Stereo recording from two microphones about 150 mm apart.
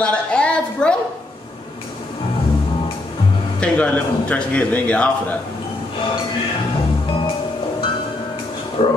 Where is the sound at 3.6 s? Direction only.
5° left (ahead or behind).